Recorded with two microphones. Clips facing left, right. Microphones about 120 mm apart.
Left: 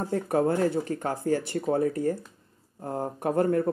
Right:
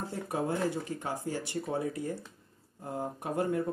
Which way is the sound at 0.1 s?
60° left (ahead or behind).